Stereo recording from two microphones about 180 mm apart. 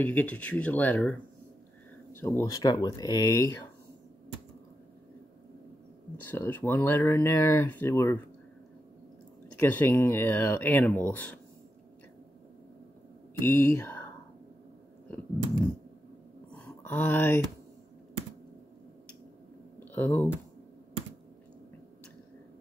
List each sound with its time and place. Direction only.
0.0 s speech: 10° left (ahead or behind)
6.3 s speech: 10° left (ahead or behind)
9.6 s speech: 10° left (ahead or behind)
13.3 s speech: 15° left (ahead or behind)
16.5 s a sound: 10° left (ahead or behind)
19.8 s typing: 10° left (ahead or behind)